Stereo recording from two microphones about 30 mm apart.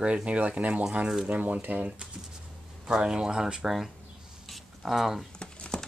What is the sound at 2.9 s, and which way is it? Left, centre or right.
Speech, right.